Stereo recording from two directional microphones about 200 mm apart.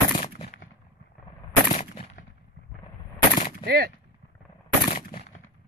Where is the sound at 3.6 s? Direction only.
50° right (ahead or behind).